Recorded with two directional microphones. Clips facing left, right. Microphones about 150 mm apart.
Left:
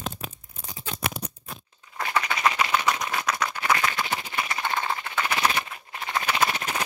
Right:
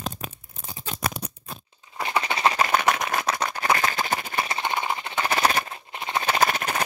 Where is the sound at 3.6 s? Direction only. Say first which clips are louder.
Right 2 dB; 40° right (ahead or behind).